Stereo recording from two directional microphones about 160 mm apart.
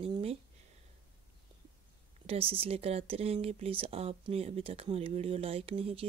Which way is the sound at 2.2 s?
35° right (ahead or behind).